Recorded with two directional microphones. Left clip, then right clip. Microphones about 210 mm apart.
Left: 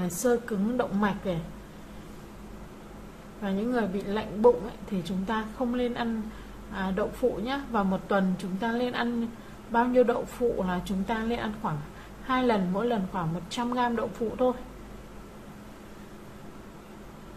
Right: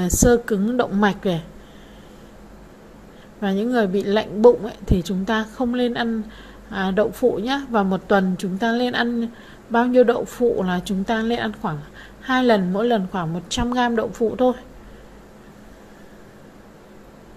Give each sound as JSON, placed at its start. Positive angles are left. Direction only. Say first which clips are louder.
{"t": 0.0, "sound": "a woman's voice", "louder": "right 9 dB", "side_deg": -30}
{"t": 3.4, "sound": "a woman's voice", "louder": "right 8 dB", "side_deg": -30}